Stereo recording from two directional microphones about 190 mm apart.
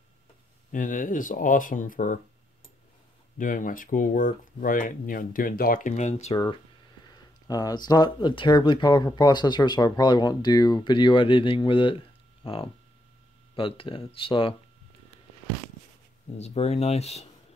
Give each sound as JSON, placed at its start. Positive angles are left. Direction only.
{"t": 0.7, "sound": "speech", "side_deg": 45}
{"t": 3.3, "sound": "speech", "side_deg": 45}
{"t": 7.1, "sound": "speech", "side_deg": 20}
{"t": 13.6, "sound": "speech", "side_deg": 30}
{"t": 16.3, "sound": "speech", "side_deg": 35}